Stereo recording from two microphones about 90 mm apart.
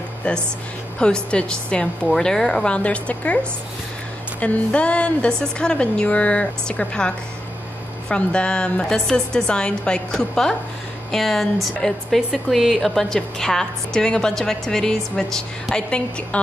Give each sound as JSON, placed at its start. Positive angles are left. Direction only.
{"t": 0.9, "sound": "a woman's voice", "side_deg": 10}
{"t": 4.4, "sound": "a woman's voice", "side_deg": 15}